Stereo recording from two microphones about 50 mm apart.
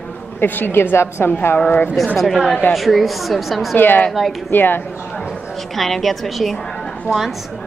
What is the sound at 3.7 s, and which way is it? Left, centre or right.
Speech, left.